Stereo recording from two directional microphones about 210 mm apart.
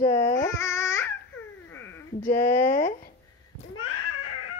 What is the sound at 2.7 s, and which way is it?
Speech, 45° left (ahead or behind).